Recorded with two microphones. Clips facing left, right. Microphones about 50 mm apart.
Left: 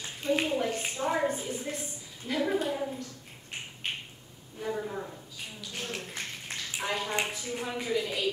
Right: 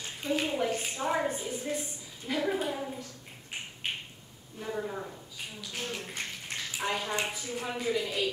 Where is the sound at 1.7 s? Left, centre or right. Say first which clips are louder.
Right 3 dB; centre.